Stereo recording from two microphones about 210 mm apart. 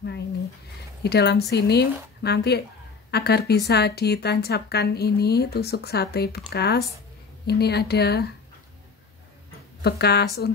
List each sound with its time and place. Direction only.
1.0 s speech: 50° left (ahead or behind)
9.8 s speech: 50° left (ahead or behind)